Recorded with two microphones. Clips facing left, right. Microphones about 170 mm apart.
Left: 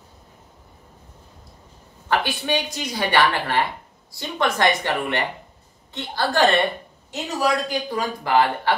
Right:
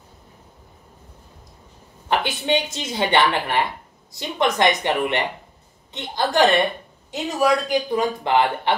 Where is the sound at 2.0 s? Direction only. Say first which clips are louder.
Right 1 dB; 20° right (ahead or behind).